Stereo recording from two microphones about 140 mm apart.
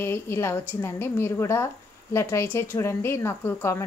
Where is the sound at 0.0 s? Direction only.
20° left (ahead or behind).